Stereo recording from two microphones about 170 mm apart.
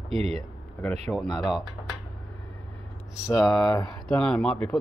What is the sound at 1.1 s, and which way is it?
Speech, centre (ahead or behind).